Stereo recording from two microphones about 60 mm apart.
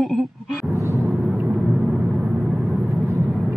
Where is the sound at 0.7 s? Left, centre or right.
Right.